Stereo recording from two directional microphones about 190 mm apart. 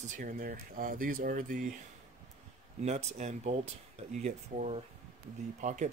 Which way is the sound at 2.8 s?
35° right (ahead or behind).